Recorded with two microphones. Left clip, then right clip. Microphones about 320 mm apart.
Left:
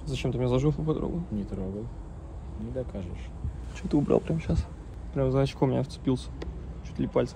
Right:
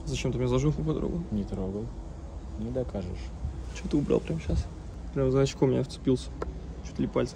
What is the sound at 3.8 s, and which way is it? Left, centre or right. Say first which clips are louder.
Speech: left 2 dB; centre.